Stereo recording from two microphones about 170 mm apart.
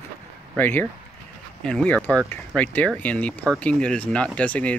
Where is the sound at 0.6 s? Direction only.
10° left (ahead or behind).